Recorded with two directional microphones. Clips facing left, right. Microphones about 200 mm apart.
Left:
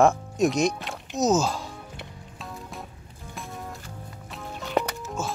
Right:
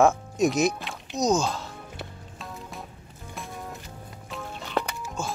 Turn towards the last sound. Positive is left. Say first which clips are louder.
# left 2 dB
turn(degrees=0)  # may be behind; listen again after turning